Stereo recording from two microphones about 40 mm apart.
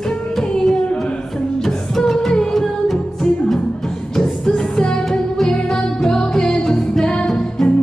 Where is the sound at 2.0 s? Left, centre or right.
Centre.